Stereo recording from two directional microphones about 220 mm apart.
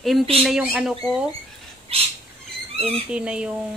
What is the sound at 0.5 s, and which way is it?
Speech, centre (ahead or behind).